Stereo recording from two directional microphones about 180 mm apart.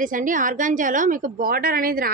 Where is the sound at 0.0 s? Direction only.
45° right (ahead or behind).